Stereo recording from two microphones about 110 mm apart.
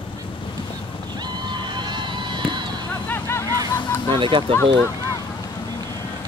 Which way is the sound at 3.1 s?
20° left (ahead or behind).